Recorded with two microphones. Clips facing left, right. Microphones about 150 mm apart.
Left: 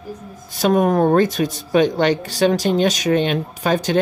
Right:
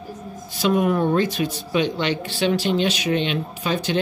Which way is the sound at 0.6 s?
45° left (ahead or behind).